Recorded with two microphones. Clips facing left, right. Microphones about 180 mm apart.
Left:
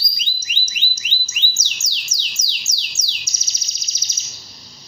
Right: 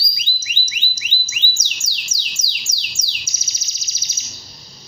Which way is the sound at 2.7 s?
10° right (ahead or behind).